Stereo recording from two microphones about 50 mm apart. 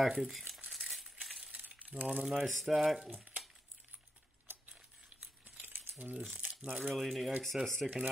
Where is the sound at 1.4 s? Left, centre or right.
Right.